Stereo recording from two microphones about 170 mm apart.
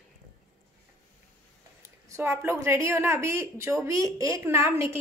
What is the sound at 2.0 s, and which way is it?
A woman's voice, 15° right (ahead or behind).